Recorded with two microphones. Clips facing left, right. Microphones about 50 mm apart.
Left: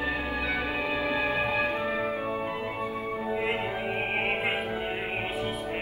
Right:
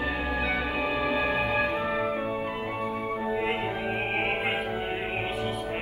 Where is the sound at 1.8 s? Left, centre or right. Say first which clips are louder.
Right 1 dB; centre.